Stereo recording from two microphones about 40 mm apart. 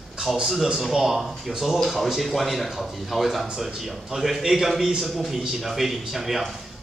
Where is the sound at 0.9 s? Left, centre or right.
Centre.